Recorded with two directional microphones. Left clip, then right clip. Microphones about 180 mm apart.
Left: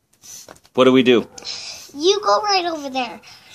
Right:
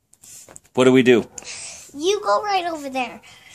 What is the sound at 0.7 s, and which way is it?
Speech, 30° right (ahead or behind).